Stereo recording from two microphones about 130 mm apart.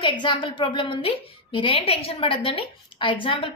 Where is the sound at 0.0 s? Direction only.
40° left (ahead or behind).